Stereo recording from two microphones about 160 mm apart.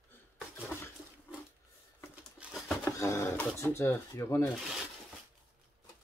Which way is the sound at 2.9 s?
20° left (ahead or behind).